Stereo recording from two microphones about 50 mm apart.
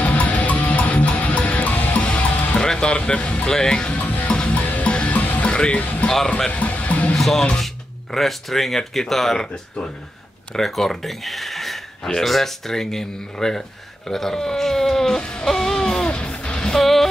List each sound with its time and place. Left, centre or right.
0.0 s music: left
2.6 s speech: centre
4.3 s music: centre
4.6 s music: left
5.5 s speech: left
6.0 s speech: centre
6.5 s music: left
7.2 s speech: centre
10.5 s speech: centre
12.0 s speech: centre
15.4 s music: centre
16.8 s music: centre